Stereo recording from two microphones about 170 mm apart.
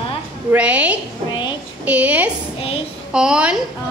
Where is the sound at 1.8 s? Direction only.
10° right (ahead or behind).